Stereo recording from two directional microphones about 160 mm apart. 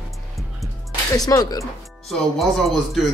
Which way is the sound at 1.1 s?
20° left (ahead or behind).